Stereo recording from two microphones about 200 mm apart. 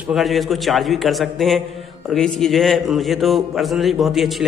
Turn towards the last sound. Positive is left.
turn(degrees=0)  # may be behind; listen again after turning